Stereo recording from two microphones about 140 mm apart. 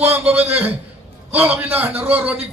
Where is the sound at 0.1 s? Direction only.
10° right (ahead or behind).